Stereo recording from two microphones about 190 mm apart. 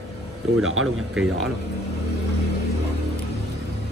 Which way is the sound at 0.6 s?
90° right.